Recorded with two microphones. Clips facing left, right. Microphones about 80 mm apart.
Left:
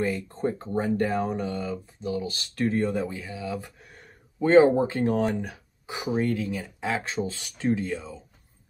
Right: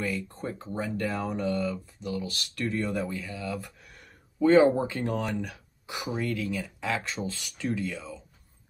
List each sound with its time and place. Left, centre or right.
0.0 s speech: left
0.5 s speech: left
0.9 s speech: left
6.1 s speech: left
6.4 s speech: left